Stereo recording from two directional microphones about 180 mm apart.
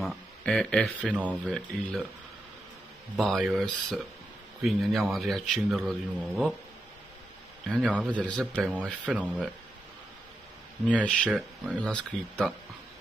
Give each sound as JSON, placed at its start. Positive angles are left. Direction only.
{"t": 0.0, "sound": "a man's voice", "side_deg": 0}
{"t": 3.2, "sound": "a man's voice", "side_deg": 0}
{"t": 7.6, "sound": "a man's voice", "side_deg": 5}
{"t": 8.6, "sound": "speech", "side_deg": -5}
{"t": 10.9, "sound": "a man's voice", "side_deg": 5}